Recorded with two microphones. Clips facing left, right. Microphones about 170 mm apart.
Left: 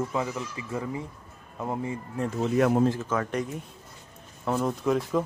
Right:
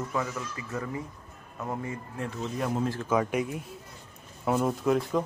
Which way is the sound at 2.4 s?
70° left (ahead or behind).